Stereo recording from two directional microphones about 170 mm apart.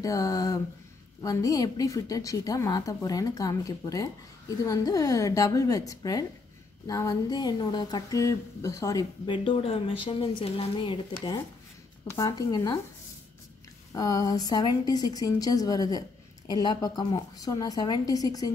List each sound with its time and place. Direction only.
0.0 s a woman's voice: 20° left (ahead or behind)
12.1 s a woman's voice: 20° left (ahead or behind)
13.9 s a woman's voice: 20° left (ahead or behind)